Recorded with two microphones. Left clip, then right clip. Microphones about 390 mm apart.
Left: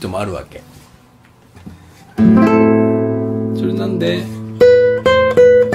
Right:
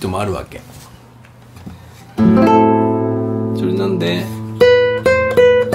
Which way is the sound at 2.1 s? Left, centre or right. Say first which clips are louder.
Even; left.